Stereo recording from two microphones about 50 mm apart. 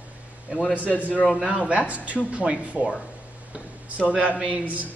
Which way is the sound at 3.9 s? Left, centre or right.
Right.